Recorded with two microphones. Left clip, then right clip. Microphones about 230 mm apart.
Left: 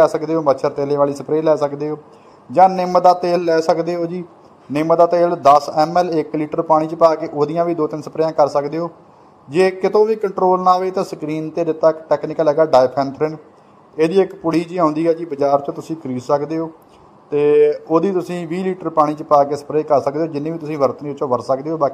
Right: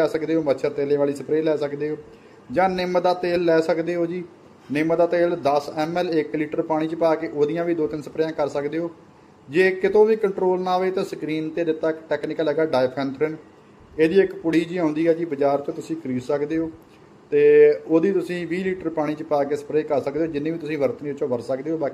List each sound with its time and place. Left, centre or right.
0.1 s a man's voice: centre